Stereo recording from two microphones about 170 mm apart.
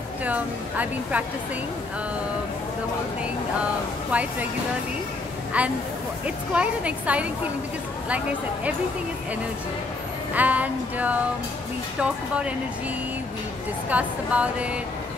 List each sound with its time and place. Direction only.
0.2 s a woman's voice: 10° right (ahead or behind)
4.1 s a woman's voice: 10° right (ahead or behind)
5.5 s a woman's voice: 10° right (ahead or behind)
10.3 s a woman's voice: 10° right (ahead or behind)
13.8 s a woman's voice: 10° right (ahead or behind)